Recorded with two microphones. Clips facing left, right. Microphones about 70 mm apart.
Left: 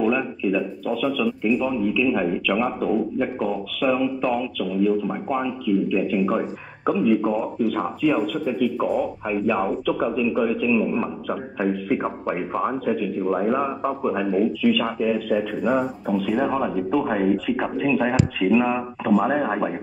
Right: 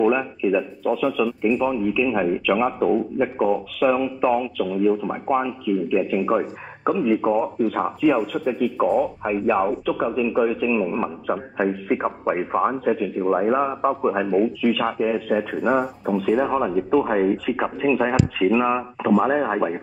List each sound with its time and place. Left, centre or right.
0.0 s a man's voice: centre
8.8 s speech: centre
9.2 s a man's voice: centre